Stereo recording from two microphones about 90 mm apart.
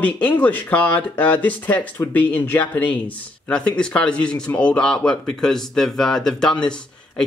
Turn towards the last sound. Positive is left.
turn(degrees=10)  # may be behind; listen again after turning